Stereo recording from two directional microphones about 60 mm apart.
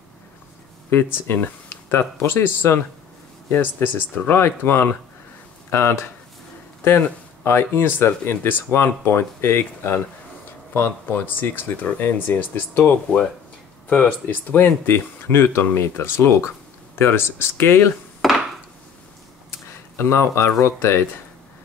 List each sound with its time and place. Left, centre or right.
0.8 s speech: left
7.4 s speech: left
14.0 s speech: left
18.2 s wood: centre
20.0 s speech: left